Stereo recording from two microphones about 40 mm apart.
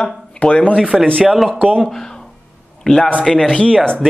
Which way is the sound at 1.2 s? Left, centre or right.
Centre.